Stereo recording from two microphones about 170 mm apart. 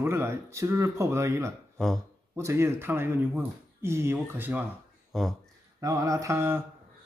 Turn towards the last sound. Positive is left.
turn(degrees=-15)  # may be behind; listen again after turning